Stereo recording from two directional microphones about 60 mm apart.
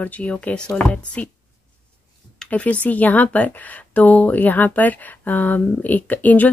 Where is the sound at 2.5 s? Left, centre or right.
Left.